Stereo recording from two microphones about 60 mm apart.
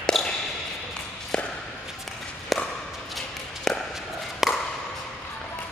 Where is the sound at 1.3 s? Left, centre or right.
Centre.